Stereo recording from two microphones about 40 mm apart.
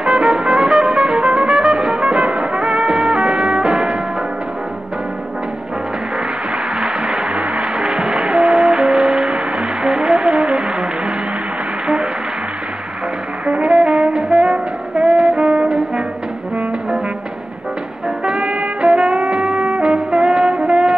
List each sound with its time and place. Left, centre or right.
0.0 s music: right
6.8 s a sound: centre
7.3 s music: right
13.5 s music: right
18.2 s music: centre